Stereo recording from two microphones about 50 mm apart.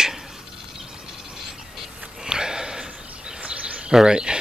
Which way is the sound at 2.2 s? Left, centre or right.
Centre.